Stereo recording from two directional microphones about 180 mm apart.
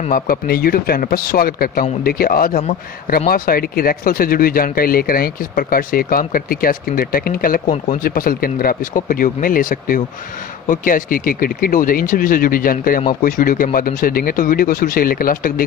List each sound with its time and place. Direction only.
0.1 s a man's voice: 55° left (ahead or behind)